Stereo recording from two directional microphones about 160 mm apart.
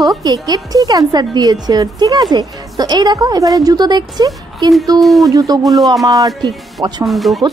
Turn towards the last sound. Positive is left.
turn(degrees=0)  # may be behind; listen again after turning